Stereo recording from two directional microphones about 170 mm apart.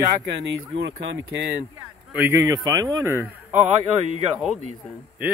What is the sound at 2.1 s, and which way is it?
Speech, 15° right (ahead or behind).